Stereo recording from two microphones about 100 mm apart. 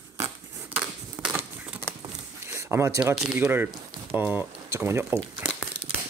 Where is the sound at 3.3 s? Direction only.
20° right (ahead or behind).